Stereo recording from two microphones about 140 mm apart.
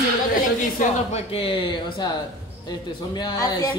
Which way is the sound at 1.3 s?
40° left (ahead or behind).